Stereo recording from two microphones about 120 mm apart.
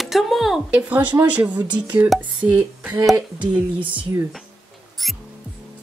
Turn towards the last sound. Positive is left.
turn(degrees=0)  # may be behind; listen again after turning